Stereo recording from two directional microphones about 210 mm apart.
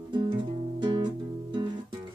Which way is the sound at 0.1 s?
25° right (ahead or behind).